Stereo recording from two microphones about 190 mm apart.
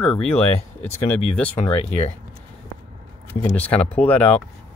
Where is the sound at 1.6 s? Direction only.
40° left (ahead or behind).